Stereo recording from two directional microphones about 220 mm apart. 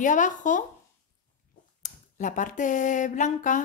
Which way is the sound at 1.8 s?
35° left (ahead or behind).